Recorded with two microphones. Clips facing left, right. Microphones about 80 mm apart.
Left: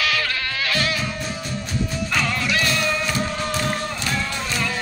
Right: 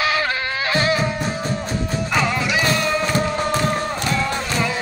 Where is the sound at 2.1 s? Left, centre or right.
Centre.